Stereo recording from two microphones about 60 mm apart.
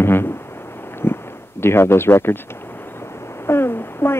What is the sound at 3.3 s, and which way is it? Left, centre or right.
Speech, left.